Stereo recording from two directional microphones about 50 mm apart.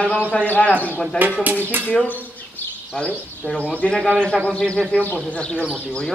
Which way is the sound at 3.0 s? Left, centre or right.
Centre.